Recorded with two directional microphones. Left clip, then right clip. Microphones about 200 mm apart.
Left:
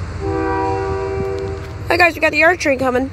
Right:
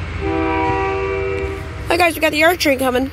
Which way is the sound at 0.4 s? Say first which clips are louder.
Even; 15° left (ahead or behind).